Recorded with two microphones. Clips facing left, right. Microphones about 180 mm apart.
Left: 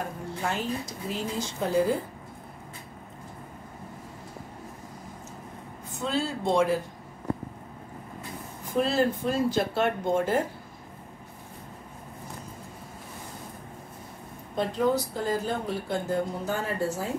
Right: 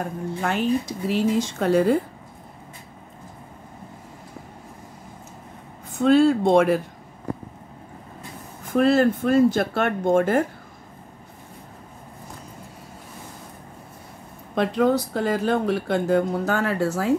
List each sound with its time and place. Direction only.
0.4 s speech: 65° right (ahead or behind)
5.9 s speech: 60° right (ahead or behind)
8.7 s speech: 60° right (ahead or behind)
14.5 s speech: 75° right (ahead or behind)